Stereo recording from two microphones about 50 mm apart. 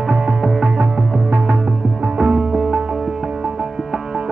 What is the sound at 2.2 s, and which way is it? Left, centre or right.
Music, centre.